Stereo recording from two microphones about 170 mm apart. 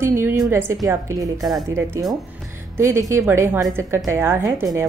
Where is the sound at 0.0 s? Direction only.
15° right (ahead or behind).